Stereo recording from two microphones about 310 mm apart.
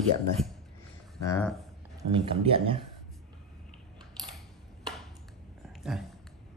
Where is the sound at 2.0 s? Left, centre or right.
Centre.